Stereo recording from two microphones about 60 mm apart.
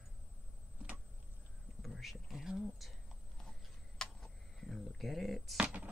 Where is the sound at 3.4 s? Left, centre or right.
Centre.